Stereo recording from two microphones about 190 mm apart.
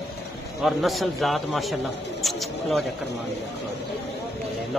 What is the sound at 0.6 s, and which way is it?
Speech, centre (ahead or behind).